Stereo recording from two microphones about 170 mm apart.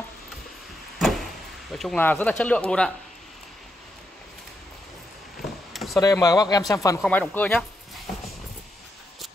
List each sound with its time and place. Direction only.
0.9 s vehicle: centre (ahead or behind)
2.0 s speech: 10° left (ahead or behind)
5.4 s a sound: centre (ahead or behind)
5.9 s speech: 20° left (ahead or behind)